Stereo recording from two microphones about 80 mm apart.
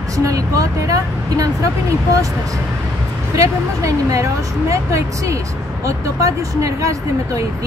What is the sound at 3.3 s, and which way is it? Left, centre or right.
Speech, right.